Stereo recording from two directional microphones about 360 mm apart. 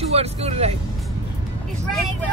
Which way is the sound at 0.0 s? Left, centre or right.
Centre.